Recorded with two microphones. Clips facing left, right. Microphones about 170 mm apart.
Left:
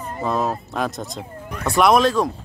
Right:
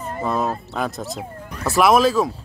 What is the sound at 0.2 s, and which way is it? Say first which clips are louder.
Speech: left 1 dB; centre (ahead or behind).